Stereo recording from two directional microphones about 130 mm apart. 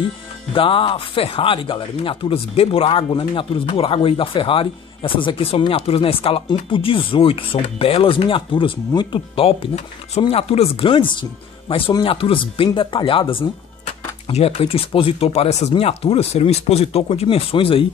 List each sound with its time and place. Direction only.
0.5 s speech: 45° left (ahead or behind)
10.9 s speech: 40° left (ahead or behind)